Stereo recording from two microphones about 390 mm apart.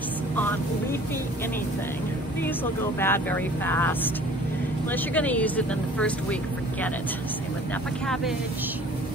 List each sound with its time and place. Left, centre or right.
3.0 s speech: centre